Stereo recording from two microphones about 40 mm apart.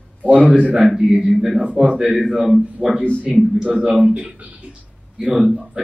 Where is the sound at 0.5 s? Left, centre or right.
Right.